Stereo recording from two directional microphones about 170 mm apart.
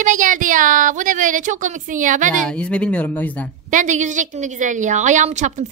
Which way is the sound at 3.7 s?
45° right (ahead or behind).